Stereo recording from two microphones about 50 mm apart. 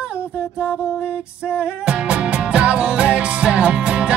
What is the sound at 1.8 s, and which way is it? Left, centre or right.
Music, right.